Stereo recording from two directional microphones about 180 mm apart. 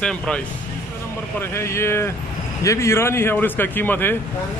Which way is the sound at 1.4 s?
15° left (ahead or behind).